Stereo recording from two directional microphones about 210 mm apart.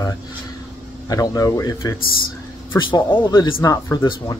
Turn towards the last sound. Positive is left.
turn(degrees=15)  # may be behind; listen again after turning